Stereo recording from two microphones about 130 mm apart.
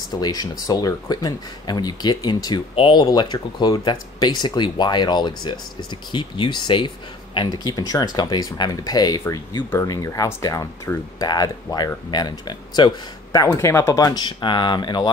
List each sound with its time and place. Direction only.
0.1 s speech: 30° left (ahead or behind)